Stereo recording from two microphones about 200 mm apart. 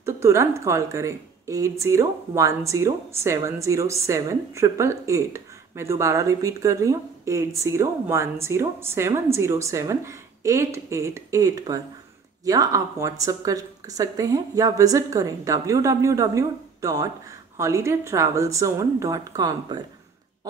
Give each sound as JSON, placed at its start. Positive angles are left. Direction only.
{"t": 0.0, "sound": "speech", "side_deg": -15}